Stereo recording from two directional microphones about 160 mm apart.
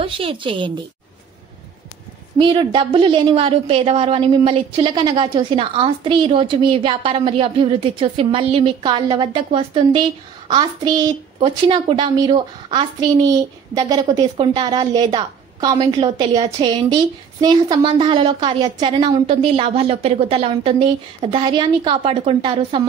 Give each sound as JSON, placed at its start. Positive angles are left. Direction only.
{"t": 0.0, "sound": "a woman's voice", "side_deg": -35}
{"t": 2.3, "sound": "a woman's voice", "side_deg": -30}